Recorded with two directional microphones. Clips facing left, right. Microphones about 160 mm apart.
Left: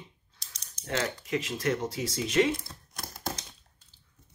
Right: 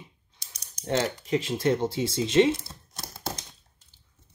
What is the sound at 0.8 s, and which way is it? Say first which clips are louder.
Speech: right 5 dB; 30° right (ahead or behind).